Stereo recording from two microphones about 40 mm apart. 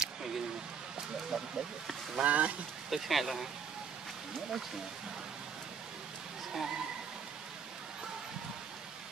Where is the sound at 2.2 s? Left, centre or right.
Right.